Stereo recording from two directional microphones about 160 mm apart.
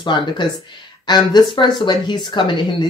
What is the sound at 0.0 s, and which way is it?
A man's voice, 30° left (ahead or behind).